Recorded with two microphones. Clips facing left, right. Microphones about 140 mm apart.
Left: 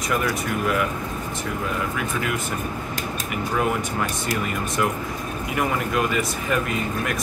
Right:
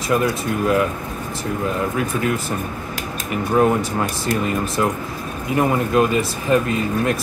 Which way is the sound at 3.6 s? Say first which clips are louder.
Right 7 dB; 35° right (ahead or behind).